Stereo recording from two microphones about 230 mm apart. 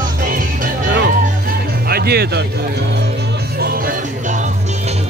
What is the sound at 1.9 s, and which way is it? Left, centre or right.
Speech, right.